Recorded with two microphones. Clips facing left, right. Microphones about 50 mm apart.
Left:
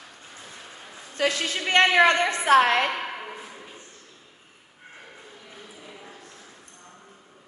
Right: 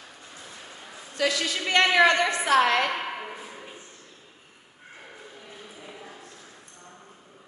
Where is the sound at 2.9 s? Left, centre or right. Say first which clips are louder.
Even; centre.